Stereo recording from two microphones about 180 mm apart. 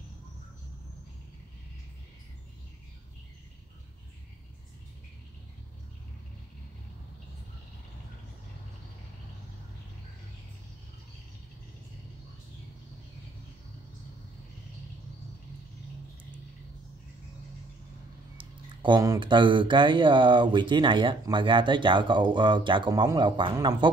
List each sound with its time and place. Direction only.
18.4 s speech: 25° right (ahead or behind)